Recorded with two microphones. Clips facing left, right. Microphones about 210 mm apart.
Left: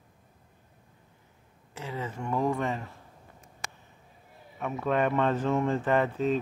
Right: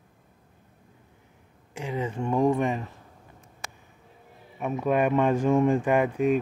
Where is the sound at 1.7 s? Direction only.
15° right (ahead or behind).